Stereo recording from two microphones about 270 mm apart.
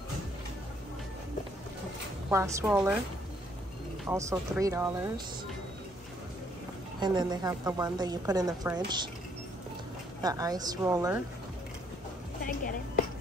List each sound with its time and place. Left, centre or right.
2.3 s a woman's voice: centre
4.1 s a woman's voice: centre
7.0 s a woman's voice: centre
10.2 s a woman's voice: centre
12.4 s chopping: left